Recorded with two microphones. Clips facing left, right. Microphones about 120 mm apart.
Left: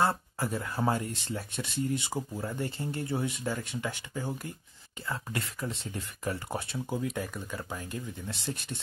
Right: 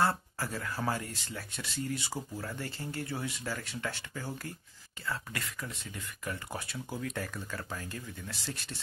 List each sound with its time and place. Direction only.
0.0 s speech: 20° left (ahead or behind)